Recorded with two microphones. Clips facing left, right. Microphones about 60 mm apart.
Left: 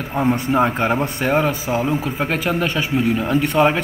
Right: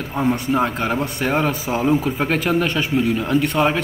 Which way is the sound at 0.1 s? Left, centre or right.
Centre.